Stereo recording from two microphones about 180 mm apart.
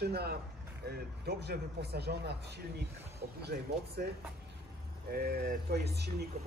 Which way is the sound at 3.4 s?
65° right (ahead or behind).